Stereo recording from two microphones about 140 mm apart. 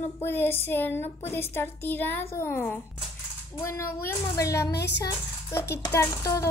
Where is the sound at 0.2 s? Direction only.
15° left (ahead or behind).